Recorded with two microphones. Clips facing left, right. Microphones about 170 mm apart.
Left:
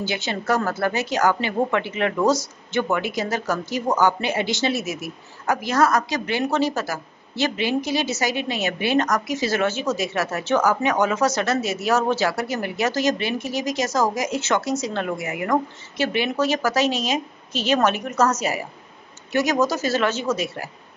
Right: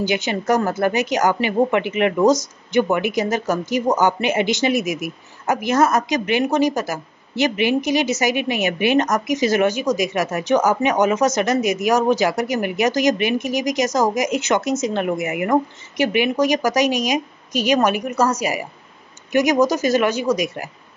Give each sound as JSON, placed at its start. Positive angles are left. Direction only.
{"t": 0.0, "sound": "a woman's voice", "side_deg": -15}